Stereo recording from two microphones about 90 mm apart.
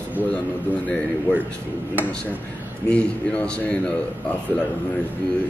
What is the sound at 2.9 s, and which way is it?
Speech, 15° left (ahead or behind).